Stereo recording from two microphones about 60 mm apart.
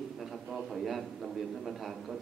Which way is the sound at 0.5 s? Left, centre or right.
Centre.